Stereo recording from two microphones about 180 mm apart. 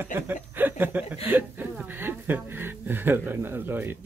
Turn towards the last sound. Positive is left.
turn(degrees=-10)  # may be behind; listen again after turning